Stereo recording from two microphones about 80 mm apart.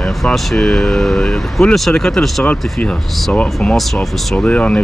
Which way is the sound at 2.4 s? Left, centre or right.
Centre.